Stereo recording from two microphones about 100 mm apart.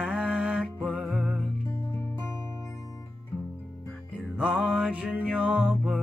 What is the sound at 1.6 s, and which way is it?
Music, 35° left (ahead or behind).